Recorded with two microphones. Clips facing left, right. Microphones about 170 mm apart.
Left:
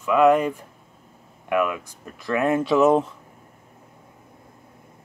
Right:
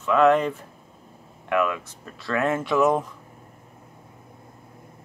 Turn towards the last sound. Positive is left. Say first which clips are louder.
# left 4 dB
turn(degrees=20)  # may be behind; listen again after turning